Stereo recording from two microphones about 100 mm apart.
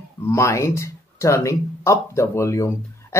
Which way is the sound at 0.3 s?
30° left (ahead or behind).